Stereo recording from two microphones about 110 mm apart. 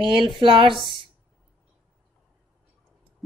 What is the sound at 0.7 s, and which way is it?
Speech, centre (ahead or behind).